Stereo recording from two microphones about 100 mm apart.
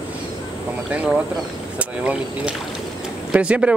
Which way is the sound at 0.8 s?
10° right (ahead or behind).